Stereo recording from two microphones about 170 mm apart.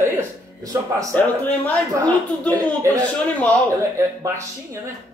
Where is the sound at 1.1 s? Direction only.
10° left (ahead or behind).